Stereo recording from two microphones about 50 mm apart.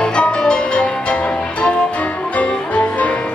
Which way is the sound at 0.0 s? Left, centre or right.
Centre.